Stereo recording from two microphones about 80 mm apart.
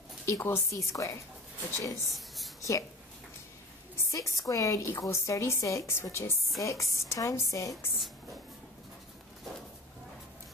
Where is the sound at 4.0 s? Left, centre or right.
Left.